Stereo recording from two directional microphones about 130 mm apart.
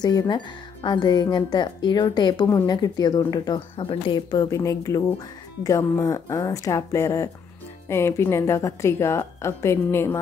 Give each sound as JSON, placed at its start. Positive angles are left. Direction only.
{"t": 0.0, "sound": "a woman's voice", "side_deg": 35}
{"t": 3.7, "sound": "a woman's voice", "side_deg": 45}